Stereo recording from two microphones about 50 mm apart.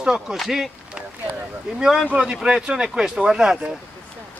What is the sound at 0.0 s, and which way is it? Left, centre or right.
Speech, centre.